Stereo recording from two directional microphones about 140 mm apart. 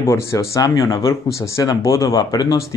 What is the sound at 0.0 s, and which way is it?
Speech, 20° left (ahead or behind).